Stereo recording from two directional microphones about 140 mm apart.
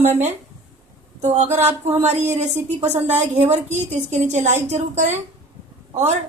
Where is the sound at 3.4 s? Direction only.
50° right (ahead or behind).